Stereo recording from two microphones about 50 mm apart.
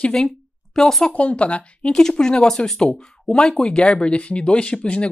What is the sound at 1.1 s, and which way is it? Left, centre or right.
Speech, left.